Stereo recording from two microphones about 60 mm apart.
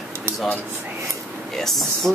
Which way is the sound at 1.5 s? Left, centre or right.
Centre.